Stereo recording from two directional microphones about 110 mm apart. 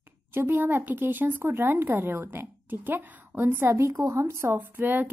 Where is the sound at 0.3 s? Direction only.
20° right (ahead or behind).